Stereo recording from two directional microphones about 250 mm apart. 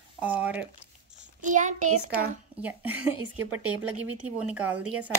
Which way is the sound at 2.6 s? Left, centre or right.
Centre.